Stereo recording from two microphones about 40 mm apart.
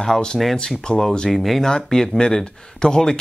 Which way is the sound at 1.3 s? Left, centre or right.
Centre.